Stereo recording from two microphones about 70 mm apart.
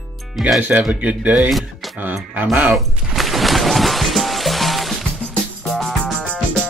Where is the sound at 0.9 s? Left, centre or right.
Right.